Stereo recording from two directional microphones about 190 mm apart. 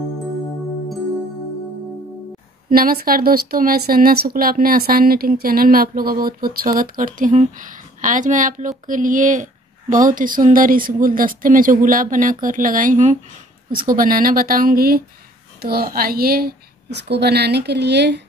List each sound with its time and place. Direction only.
2.7 s a woman's voice: 50° right (ahead or behind)